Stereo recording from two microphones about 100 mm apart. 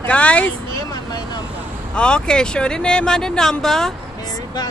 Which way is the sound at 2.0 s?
10° left (ahead or behind).